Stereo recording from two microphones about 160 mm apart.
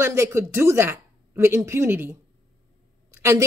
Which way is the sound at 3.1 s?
20° right (ahead or behind).